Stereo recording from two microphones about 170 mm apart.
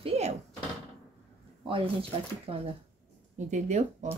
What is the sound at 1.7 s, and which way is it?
Speech, 30° right (ahead or behind).